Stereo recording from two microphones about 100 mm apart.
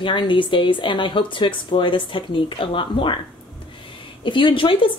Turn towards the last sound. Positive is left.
turn(degrees=60)  # may be behind; listen again after turning